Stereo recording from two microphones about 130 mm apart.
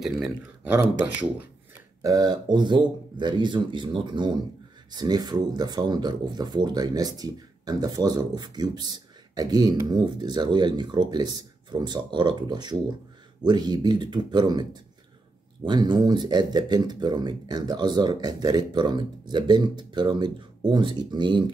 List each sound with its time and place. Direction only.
0.0 s speech: 5° right (ahead or behind)
2.0 s speech: 30° right (ahead or behind)